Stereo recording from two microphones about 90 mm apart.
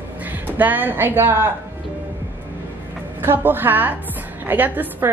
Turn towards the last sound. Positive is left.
turn(degrees=-20)  # may be behind; listen again after turning